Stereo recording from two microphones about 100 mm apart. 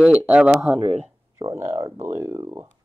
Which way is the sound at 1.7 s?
40° right (ahead or behind).